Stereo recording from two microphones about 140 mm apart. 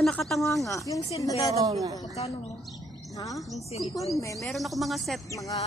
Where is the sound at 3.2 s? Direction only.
25° left (ahead or behind).